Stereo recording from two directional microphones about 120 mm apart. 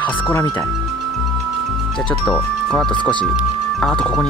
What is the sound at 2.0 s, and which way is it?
Speech, 10° left (ahead or behind).